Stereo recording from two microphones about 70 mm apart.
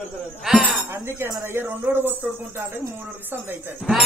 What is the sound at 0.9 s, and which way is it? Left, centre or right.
Speech, right.